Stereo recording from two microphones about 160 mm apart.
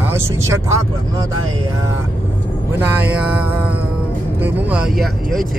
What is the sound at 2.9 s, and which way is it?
Speech, 10° right (ahead or behind).